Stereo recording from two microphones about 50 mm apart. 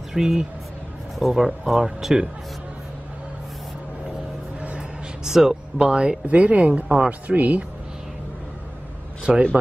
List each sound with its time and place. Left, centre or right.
0.1 s speech: centre
4.7 s music: centre
6.2 s speech: right
9.3 s speech: centre